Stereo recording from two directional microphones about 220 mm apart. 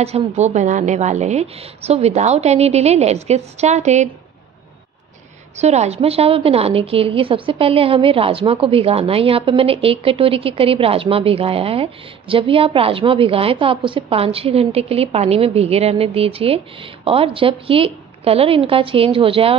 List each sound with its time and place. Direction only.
0.0 s a woman's voice: 30° right (ahead or behind)
5.6 s a woman's voice: 30° right (ahead or behind)